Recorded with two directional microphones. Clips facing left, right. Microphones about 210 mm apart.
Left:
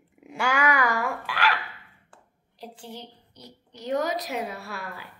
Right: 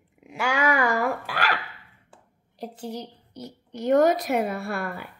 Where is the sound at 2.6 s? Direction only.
40° right (ahead or behind).